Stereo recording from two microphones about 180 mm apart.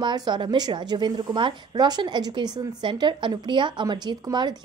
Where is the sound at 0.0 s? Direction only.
25° right (ahead or behind).